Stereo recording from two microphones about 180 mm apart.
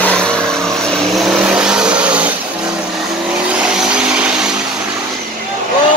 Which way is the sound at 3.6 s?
5° right (ahead or behind).